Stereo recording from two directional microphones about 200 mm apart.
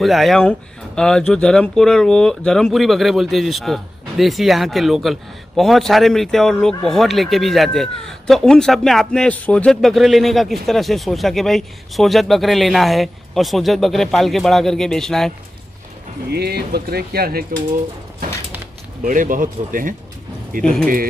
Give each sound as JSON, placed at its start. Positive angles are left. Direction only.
{"t": 0.0, "sound": "a man's voice", "side_deg": 0}
{"t": 16.3, "sound": "speech", "side_deg": -55}
{"t": 19.0, "sound": "speech", "side_deg": -40}
{"t": 20.6, "sound": "a man's voice", "side_deg": 5}